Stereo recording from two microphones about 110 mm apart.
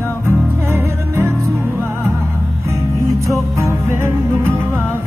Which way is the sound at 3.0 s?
30° right (ahead or behind).